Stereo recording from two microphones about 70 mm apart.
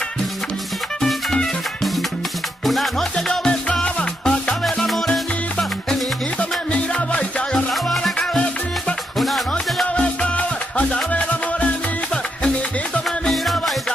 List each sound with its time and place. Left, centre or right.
1.0 s music: centre
6.7 s music: centre
7.5 s music: centre
9.5 s music: centre
13.2 s music: centre